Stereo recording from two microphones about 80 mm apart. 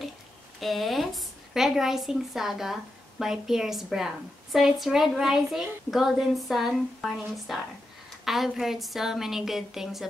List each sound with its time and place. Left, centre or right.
0.6 s a woman's voice: centre